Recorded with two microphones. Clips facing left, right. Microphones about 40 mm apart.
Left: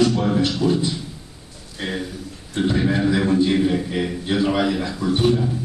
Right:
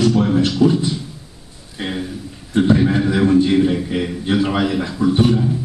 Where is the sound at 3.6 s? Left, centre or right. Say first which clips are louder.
Right 3 dB; centre.